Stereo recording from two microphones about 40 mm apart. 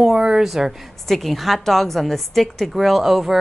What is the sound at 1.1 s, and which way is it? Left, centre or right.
A woman's voice, centre.